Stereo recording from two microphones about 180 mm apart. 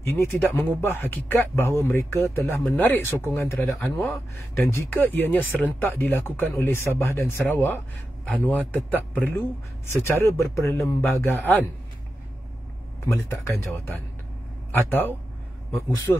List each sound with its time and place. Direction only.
0.0 s speech: 10° left (ahead or behind)
13.0 s speech: 15° left (ahead or behind)